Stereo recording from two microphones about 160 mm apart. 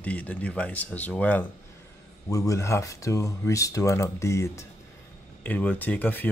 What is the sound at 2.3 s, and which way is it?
Speech, 20° left (ahead or behind).